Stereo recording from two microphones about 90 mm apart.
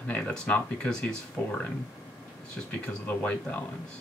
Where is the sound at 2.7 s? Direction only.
15° left (ahead or behind).